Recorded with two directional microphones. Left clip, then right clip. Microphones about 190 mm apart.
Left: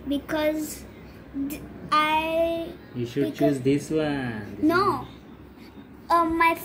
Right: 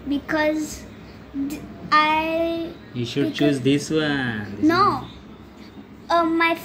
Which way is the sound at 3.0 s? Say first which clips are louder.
Right 2 dB; 30° right (ahead or behind).